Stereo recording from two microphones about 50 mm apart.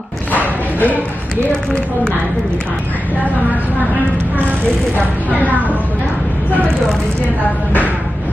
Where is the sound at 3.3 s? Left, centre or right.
Right.